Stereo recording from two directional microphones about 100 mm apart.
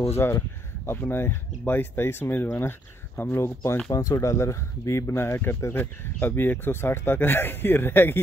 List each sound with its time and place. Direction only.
0.1 s speech: 25° left (ahead or behind)